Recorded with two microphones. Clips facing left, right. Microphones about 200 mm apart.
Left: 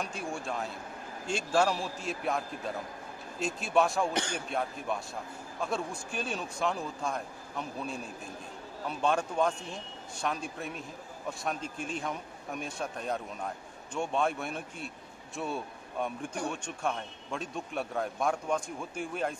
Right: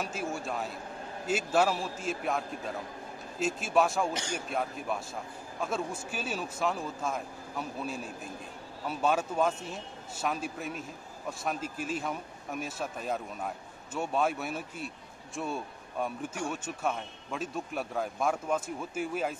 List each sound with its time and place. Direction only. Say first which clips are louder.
0.0 s a man's voice: right 2 dB; centre (ahead or behind)